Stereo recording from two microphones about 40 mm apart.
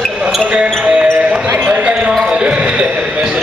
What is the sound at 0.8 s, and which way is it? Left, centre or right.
Basketball bounce, right.